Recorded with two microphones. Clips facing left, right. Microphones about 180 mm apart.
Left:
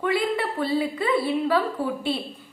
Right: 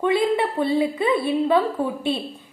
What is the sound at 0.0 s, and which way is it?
A woman's voice, 20° right (ahead or behind).